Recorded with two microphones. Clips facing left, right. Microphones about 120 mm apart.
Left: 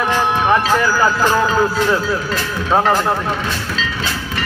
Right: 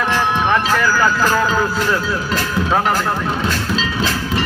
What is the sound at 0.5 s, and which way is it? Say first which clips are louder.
Speech: left 2 dB; 20° left (ahead or behind).